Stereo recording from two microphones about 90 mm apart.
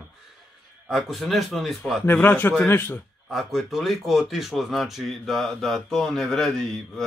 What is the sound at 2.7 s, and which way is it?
Speech, 25° left (ahead or behind).